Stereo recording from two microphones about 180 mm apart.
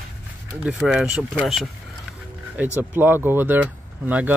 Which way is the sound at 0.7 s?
Centre (ahead or behind).